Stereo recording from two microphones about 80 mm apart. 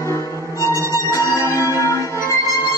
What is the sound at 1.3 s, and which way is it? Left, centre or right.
Music, left.